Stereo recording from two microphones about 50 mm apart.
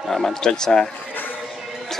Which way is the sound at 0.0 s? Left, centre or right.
Centre.